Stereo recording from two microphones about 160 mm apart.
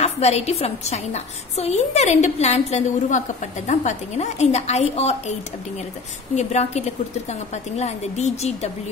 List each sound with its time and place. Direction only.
0.0 s a woman's voice: 40° left (ahead or behind)
6.3 s a woman's voice: 45° left (ahead or behind)